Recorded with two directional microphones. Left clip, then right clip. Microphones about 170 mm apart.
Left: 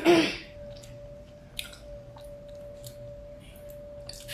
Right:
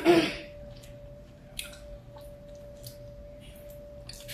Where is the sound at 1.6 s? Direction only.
10° left (ahead or behind).